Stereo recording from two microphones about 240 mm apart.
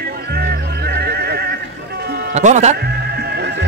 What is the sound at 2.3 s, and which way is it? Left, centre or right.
Speech, right.